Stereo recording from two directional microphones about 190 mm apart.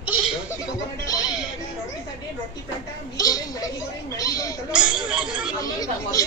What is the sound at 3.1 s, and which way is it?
A woman's voice, 20° left (ahead or behind).